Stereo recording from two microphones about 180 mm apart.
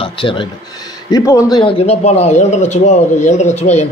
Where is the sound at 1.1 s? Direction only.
20° left (ahead or behind).